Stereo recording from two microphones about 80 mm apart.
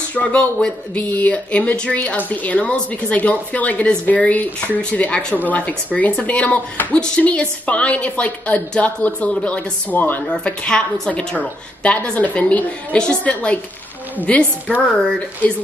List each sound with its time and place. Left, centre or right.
0.1 s speech: centre
10.3 s speech: centre